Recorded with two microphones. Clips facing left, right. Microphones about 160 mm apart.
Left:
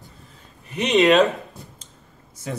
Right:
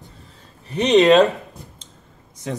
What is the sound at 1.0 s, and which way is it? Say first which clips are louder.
Speech: right 3 dB; centre (ahead or behind).